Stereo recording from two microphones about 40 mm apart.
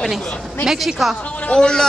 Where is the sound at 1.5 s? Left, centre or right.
Centre.